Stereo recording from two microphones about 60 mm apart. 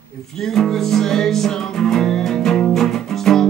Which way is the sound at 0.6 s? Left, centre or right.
Centre.